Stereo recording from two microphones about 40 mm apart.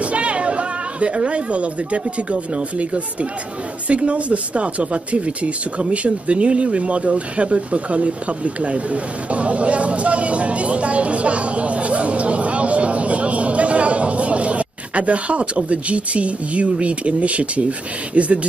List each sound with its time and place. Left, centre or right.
0.0 s speech: right